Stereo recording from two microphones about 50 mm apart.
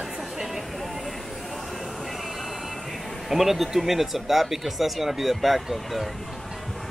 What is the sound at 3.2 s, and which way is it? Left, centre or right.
Speech, centre.